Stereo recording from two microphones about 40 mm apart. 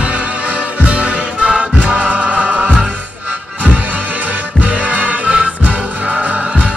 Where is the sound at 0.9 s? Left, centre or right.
Right.